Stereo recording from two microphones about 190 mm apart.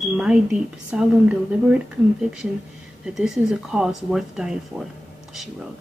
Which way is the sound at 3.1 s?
Centre (ahead or behind).